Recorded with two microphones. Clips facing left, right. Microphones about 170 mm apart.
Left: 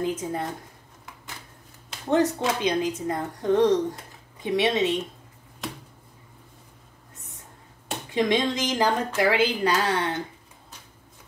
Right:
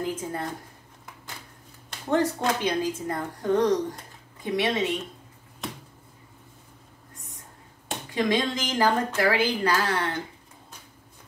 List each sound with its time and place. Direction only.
0.0 s speech: 25° left (ahead or behind)
2.0 s speech: 20° left (ahead or behind)
8.1 s speech: 20° left (ahead or behind)